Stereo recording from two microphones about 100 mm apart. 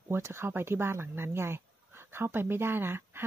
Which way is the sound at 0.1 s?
25° right (ahead or behind).